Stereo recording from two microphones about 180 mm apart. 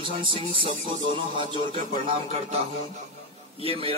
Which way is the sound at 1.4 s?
25° right (ahead or behind).